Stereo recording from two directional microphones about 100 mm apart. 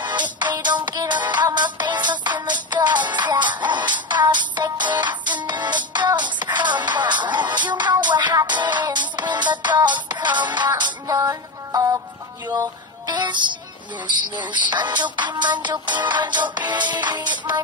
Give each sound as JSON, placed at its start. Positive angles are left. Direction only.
{"t": 0.0, "sound": "music", "side_deg": -50}
{"t": 11.1, "sound": "music", "side_deg": -35}
{"t": 14.5, "sound": "music", "side_deg": -50}